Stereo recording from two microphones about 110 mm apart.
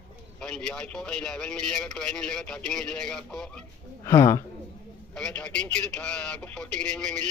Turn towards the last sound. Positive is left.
turn(degrees=10)  # may be behind; listen again after turning